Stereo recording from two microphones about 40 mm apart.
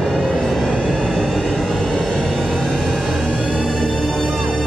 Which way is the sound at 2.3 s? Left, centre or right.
Centre.